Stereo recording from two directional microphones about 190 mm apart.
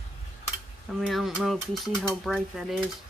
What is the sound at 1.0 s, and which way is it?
Speech, centre (ahead or behind).